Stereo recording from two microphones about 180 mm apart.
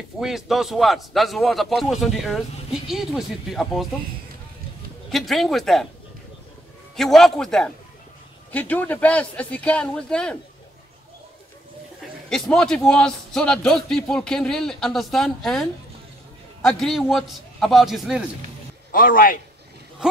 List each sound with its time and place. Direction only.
0.2 s a man's voice: centre (ahead or behind)
5.1 s a man's voice: centre (ahead or behind)
7.0 s a man's voice: centre (ahead or behind)
12.3 s a man's voice: 5° left (ahead or behind)
16.6 s a man's voice: centre (ahead or behind)
18.9 s a man's voice: 50° left (ahead or behind)